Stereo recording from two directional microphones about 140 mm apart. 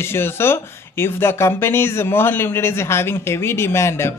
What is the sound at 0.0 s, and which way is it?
Speech, 15° left (ahead or behind).